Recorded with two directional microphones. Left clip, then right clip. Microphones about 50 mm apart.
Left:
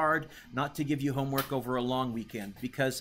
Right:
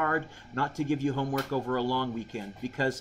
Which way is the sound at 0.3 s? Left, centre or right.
Left.